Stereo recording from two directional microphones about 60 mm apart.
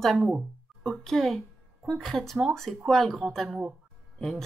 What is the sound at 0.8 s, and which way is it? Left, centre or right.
A woman's voice, centre.